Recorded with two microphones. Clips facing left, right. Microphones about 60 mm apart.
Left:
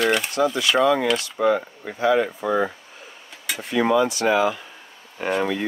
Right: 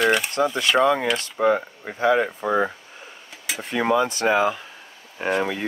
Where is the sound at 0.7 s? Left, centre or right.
Centre.